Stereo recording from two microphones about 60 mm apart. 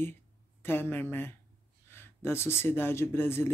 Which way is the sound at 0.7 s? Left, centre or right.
Left.